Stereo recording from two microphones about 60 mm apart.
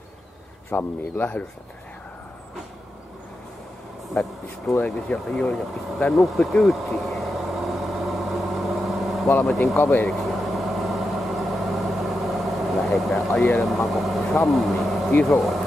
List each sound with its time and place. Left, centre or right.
0.7 s speech: left
4.1 s speech: centre
4.7 s speech: centre
6.2 s vehicle: centre
9.8 s speech: left
10.0 s vehicle: centre
15.2 s speech: centre